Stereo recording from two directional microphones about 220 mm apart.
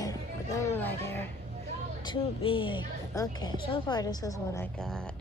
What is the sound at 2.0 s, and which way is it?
A woman's voice, 25° left (ahead or behind).